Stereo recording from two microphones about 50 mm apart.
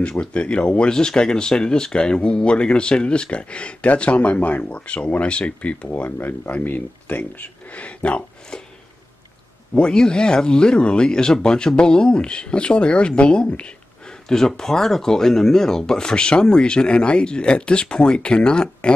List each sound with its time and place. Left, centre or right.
0.2 s speech: left
6.1 s speech: left; by 8.6 s centre
9.8 s speech: centre
14.3 s speech: centre